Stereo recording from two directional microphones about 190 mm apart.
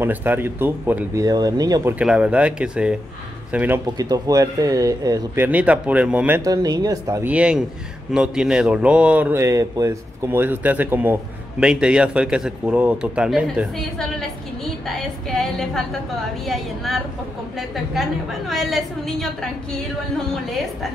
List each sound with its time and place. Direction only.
0.0 s speech: 10° right (ahead or behind)
2.0 s a man's voice: 5° right (ahead or behind)
7.3 s a man's voice: 5° right (ahead or behind)